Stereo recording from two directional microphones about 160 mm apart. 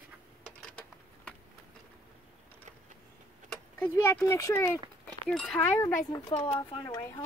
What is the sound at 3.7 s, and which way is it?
Speech, 15° left (ahead or behind).